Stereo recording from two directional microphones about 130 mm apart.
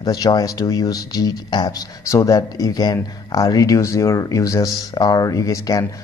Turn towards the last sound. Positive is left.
turn(degrees=25)  # may be behind; listen again after turning